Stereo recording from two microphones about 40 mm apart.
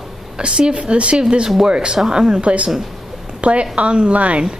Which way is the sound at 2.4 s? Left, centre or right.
Right.